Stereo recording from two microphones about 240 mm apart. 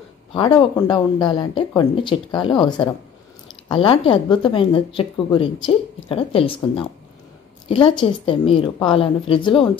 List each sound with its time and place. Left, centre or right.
0.3 s speech: left